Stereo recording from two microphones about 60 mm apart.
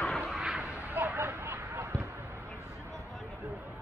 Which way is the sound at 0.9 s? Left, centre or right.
Right.